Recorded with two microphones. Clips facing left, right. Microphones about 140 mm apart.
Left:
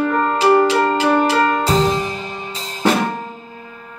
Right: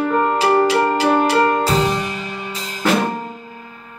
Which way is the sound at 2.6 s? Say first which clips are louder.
Left 3 dB; 35° left (ahead or behind).